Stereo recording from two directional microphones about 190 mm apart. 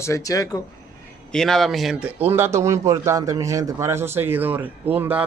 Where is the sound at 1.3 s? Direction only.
5° left (ahead or behind).